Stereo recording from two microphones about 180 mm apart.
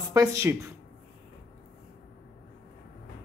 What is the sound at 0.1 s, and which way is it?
Speech, 15° right (ahead or behind).